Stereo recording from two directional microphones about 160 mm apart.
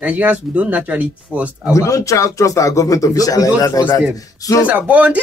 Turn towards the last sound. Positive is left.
turn(degrees=-10)  # may be behind; listen again after turning